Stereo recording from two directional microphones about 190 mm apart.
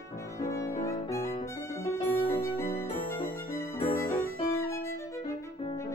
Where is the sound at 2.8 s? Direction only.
15° left (ahead or behind).